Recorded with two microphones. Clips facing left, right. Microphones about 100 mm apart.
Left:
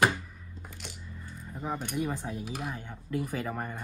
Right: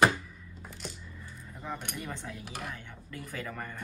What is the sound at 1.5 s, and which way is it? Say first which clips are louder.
Speech: left 5 dB; 35° left (ahead or behind).